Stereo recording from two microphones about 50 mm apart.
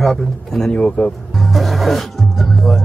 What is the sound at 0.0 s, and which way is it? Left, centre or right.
A man's voice, centre.